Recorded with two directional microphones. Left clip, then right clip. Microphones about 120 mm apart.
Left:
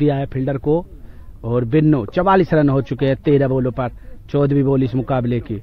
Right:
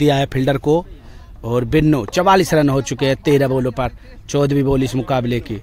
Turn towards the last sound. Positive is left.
turn(degrees=-20)  # may be behind; listen again after turning